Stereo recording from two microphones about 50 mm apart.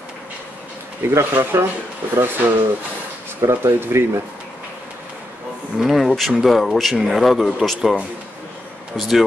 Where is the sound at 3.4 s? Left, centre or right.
Right.